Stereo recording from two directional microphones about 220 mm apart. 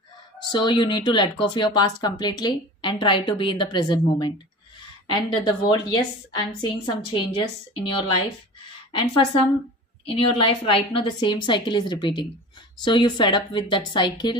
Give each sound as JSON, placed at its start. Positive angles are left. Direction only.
{"t": 0.5, "sound": "speech", "side_deg": 20}